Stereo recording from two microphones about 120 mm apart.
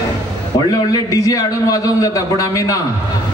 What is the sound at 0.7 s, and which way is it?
A man's voice, 30° left (ahead or behind).